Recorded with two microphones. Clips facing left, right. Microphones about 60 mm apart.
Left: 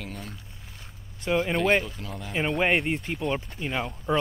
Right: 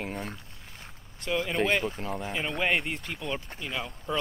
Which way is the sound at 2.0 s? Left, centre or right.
Right.